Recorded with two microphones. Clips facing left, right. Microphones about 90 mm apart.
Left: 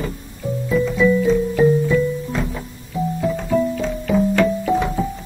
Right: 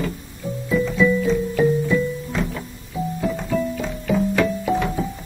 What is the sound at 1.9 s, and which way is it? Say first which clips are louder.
Music: left 3 dB; 5° left (ahead or behind).